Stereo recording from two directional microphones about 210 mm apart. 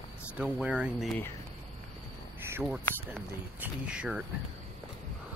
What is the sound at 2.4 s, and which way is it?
Crow, 10° right (ahead or behind).